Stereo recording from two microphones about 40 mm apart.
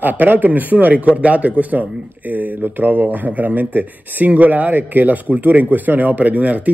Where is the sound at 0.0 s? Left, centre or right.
Right.